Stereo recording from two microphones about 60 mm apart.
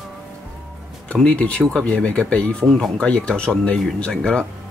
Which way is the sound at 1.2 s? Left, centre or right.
Centre.